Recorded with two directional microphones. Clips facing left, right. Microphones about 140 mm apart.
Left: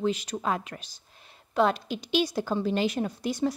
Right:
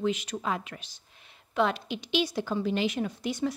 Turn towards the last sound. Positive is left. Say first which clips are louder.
# left 2 dB
turn(degrees=35)  # may be behind; listen again after turning